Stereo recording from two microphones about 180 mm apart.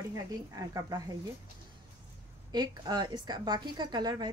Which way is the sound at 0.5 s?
20° right (ahead or behind).